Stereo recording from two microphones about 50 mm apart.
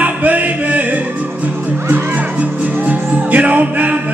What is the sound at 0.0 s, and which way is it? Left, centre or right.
Music, right.